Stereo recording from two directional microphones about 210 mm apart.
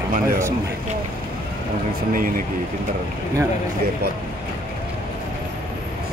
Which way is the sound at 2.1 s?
40° right (ahead or behind).